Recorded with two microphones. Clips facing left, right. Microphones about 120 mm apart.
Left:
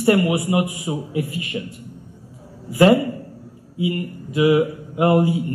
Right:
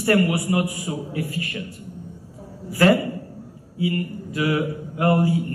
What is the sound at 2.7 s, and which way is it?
A man's voice, 20° left (ahead or behind).